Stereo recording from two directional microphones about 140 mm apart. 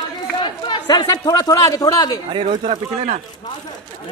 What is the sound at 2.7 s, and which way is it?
Speech, 55° right (ahead or behind).